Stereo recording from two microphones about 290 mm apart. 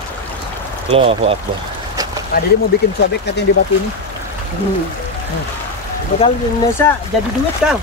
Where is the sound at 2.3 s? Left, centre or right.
Left.